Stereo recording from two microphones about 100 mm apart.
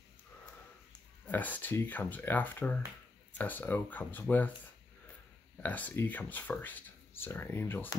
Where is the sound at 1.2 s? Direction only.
15° left (ahead or behind).